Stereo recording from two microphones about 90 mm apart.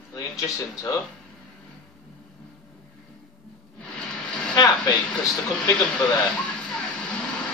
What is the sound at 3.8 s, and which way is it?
Music, 5° left (ahead or behind).